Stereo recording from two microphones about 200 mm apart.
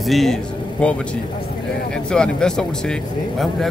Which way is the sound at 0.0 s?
Centre (ahead or behind).